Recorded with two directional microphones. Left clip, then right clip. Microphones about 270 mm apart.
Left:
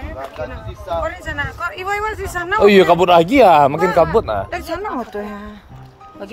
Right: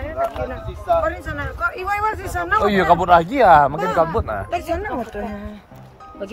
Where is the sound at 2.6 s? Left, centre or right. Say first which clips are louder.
Left 7 dB; left.